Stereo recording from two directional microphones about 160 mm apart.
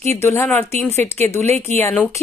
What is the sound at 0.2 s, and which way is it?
A woman's voice, 15° left (ahead or behind).